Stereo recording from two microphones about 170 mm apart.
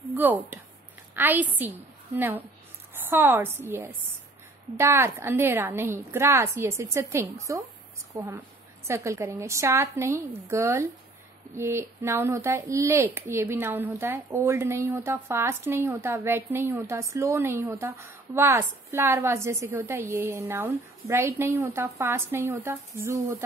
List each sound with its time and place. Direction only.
0.1 s a woman's voice: 10° right (ahead or behind)